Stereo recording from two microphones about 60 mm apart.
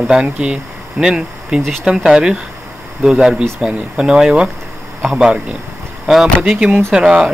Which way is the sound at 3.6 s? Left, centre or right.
Centre.